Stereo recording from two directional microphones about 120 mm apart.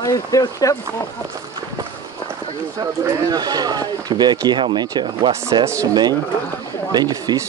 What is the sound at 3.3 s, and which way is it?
Speech, 35° right (ahead or behind).